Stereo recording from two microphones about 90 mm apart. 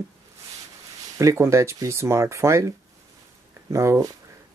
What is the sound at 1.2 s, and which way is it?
Speech, 35° right (ahead or behind).